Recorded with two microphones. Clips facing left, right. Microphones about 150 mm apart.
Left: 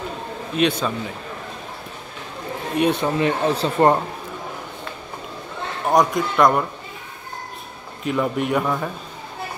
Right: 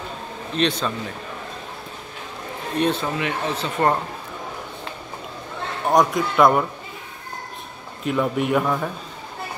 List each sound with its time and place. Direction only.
0.6 s a man's voice: 10° left (ahead or behind)
2.8 s a man's voice: 15° left (ahead or behind)
3.2 s speech: 35° left (ahead or behind)
5.9 s a man's voice: centre (ahead or behind)
8.0 s a man's voice: centre (ahead or behind)